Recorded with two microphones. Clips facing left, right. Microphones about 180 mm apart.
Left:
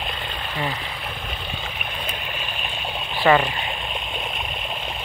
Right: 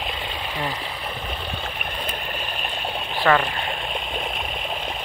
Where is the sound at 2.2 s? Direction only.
40° right (ahead or behind).